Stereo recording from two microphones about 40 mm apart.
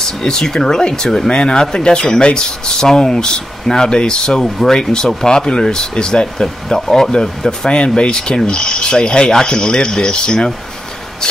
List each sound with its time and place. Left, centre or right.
0.2 s speech: centre